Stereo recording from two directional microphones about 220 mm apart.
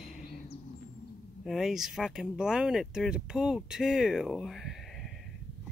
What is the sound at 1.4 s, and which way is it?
Speech, centre (ahead or behind).